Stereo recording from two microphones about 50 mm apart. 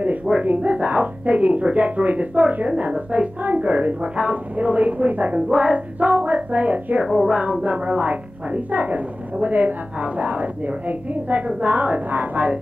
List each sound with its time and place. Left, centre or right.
0.5 s speech: right
7.1 s speech: centre
7.6 s a woman's voice: right